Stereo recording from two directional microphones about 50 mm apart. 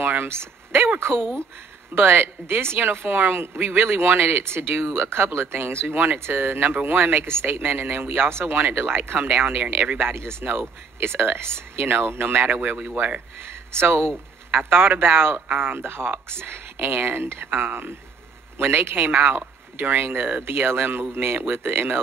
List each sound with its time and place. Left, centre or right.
0.0 s a sound: right
0.9 s speech: right
12.4 s speech: right
13.5 s speech: right
18.9 s speech: right